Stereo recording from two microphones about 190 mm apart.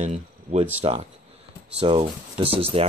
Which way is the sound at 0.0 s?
35° right (ahead or behind).